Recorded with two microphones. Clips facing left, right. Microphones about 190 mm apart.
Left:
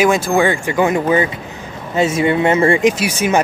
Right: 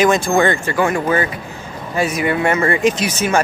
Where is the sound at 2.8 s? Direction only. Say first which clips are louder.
Left 2 dB; 10° left (ahead or behind).